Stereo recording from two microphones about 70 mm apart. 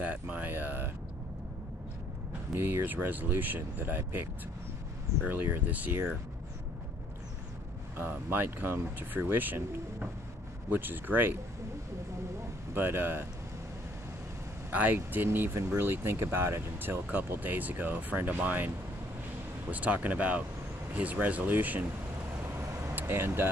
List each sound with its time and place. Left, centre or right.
0.0 s a sound: right
2.5 s speech: right
8.0 s speech: right
12.7 s speech: right
14.7 s speech: right
15.2 s speech: right
19.7 s speech: right
22.5 s vehicle: right
22.9 s speech: right